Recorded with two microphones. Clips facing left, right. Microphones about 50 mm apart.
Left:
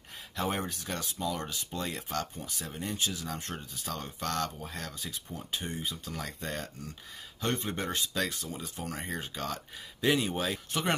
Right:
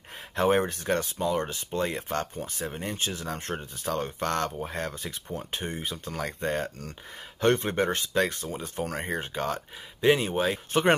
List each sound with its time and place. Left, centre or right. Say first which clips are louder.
0.4 s speech: right 9 dB; right
10.7 s speech: right 9 dB; right